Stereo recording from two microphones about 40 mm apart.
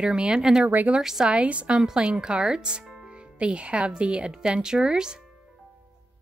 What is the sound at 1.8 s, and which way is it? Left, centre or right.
A child's voice, centre.